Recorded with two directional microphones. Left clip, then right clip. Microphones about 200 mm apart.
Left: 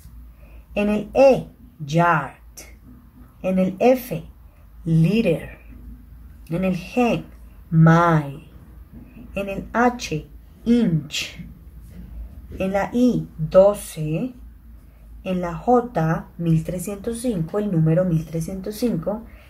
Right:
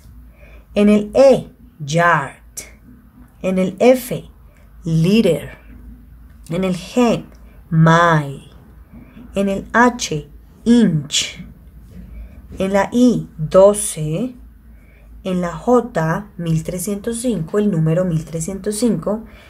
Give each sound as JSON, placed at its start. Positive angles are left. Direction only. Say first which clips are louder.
{"t": 0.7, "sound": "speech", "louder": "right 5 dB", "side_deg": -35}
{"t": 6.4, "sound": "speech", "louder": "right 4 dB", "side_deg": -35}
{"t": 9.3, "sound": "speech", "louder": "right 8 dB", "side_deg": -35}
{"t": 12.5, "sound": "speech", "louder": "right 5 dB", "side_deg": -35}
{"t": 15.2, "sound": "speech", "louder": "right 3 dB", "side_deg": -35}